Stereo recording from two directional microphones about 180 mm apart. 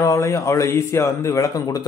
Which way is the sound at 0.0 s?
15° left (ahead or behind).